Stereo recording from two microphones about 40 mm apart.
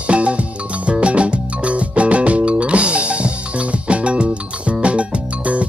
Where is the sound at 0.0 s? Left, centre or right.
Right.